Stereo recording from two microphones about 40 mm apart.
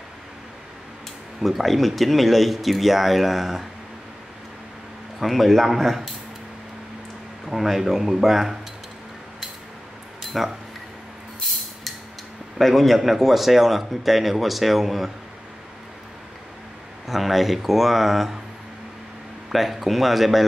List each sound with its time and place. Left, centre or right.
1.4 s speech: centre
5.2 s speech: centre
7.4 s speech: centre
10.3 s speech: centre
12.5 s speech: centre
17.1 s speech: centre
19.5 s speech: centre